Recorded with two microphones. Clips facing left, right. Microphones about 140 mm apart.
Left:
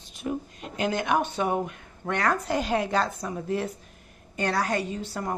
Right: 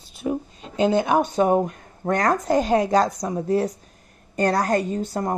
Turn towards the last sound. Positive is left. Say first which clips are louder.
# right 6 dB
turn(degrees=-45)  # may be behind; listen again after turning